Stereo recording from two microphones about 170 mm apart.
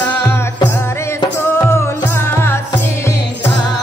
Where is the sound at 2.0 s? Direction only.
15° left (ahead or behind).